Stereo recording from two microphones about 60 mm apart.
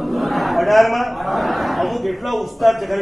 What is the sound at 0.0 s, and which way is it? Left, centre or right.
A man's voice, centre.